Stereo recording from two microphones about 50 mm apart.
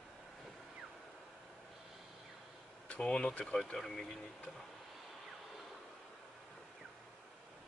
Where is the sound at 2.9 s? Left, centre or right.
Left.